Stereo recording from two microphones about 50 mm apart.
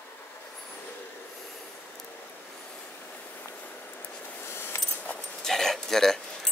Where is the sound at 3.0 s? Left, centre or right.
Left.